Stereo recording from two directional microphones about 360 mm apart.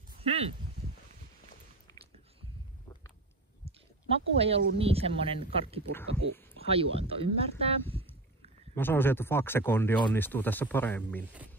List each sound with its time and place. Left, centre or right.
0.2 s speech: centre
3.6 s speech: centre
8.7 s speech: centre